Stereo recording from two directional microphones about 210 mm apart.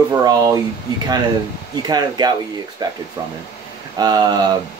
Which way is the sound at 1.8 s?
20° right (ahead or behind).